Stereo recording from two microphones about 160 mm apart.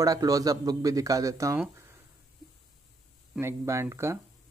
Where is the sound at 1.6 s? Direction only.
15° right (ahead or behind).